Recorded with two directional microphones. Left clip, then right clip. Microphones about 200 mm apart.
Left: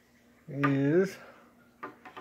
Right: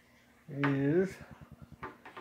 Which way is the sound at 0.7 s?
50° left (ahead or behind).